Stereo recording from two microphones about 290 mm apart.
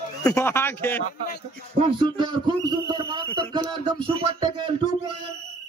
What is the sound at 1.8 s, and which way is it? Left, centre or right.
A man's voice, centre.